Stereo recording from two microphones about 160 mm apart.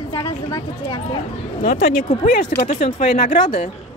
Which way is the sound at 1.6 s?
60° left (ahead or behind).